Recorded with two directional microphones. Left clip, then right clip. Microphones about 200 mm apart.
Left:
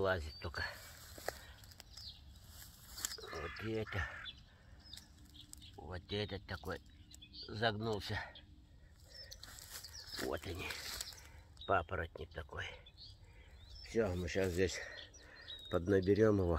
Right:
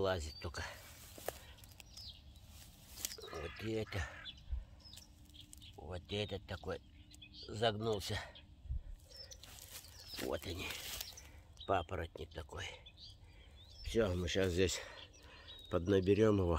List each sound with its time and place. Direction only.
0.0 s speech: 15° right (ahead or behind)
1.1 s walk: 10° right (ahead or behind)
3.2 s frog: 15° right (ahead or behind)
5.8 s speech: 10° right (ahead or behind)
10.1 s speech: 5° right (ahead or behind)
10.4 s speech: 20° right (ahead or behind)
10.7 s a sound: 5° right (ahead or behind)
11.6 s speech: 15° right (ahead or behind)
14.4 s speech: 35° right (ahead or behind)
14.8 s a sound: 15° right (ahead or behind)
15.4 s a sound: 5° right (ahead or behind)
16.2 s speech: centre (ahead or behind)